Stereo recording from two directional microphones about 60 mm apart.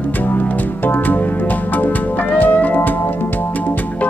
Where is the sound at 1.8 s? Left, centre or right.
Left.